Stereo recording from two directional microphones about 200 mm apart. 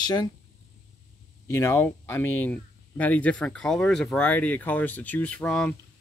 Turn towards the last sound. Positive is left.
turn(degrees=5)  # may be behind; listen again after turning